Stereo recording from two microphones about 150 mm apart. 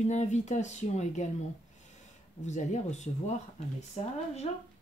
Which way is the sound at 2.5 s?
50° left (ahead or behind).